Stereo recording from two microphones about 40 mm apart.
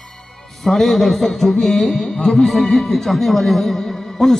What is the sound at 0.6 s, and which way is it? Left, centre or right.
A man's voice, centre.